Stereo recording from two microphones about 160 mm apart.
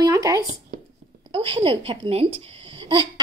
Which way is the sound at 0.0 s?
20° right (ahead or behind).